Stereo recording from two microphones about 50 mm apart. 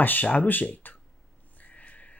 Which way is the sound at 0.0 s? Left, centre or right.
Left.